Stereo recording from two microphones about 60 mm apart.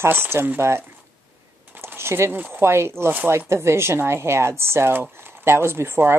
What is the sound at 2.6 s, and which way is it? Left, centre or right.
Speech, right.